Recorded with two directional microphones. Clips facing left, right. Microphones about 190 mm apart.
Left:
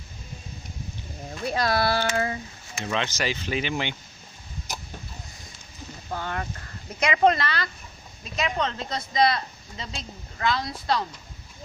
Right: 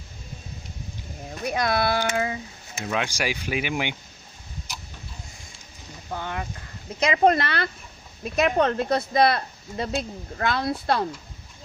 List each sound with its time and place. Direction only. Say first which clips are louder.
1.4 s speech: even; 15° right (ahead or behind)
6.1 s speech: even; 15° right (ahead or behind)
7.2 s speech: right 1 dB; 55° right (ahead or behind)